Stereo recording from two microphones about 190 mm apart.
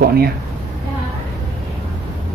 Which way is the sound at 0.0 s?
55° right (ahead or behind).